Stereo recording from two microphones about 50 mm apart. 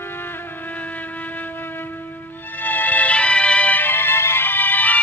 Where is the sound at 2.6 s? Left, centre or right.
Left.